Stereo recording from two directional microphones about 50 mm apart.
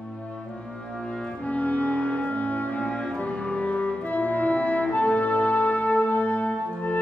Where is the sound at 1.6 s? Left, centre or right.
Left.